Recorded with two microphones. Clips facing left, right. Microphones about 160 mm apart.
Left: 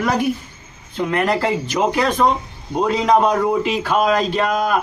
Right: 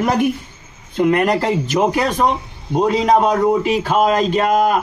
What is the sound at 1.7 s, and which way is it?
Speech, 25° right (ahead or behind).